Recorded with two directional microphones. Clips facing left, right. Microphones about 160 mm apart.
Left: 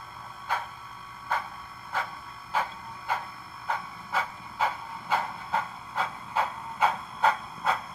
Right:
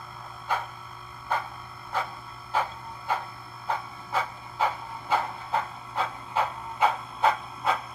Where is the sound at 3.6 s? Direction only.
30° right (ahead or behind).